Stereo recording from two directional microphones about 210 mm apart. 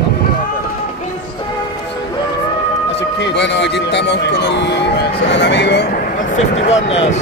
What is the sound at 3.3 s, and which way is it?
Speech, 55° left (ahead or behind).